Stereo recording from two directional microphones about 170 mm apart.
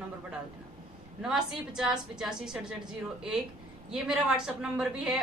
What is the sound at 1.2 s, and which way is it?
A woman's voice, 5° right (ahead or behind).